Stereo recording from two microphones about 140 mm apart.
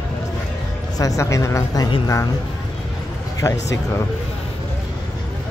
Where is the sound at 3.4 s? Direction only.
20° left (ahead or behind).